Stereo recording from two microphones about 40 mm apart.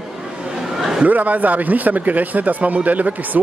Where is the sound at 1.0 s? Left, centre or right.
Right.